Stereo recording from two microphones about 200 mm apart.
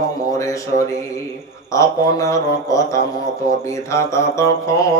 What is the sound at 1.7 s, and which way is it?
Speech, 15° left (ahead or behind).